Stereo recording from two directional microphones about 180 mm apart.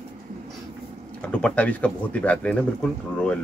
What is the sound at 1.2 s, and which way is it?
Speech, 5° left (ahead or behind).